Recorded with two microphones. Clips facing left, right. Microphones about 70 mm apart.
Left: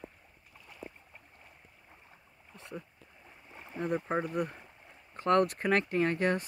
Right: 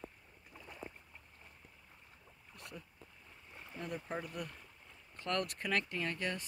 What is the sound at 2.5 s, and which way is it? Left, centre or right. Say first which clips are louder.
Boat: left 7 dB; left.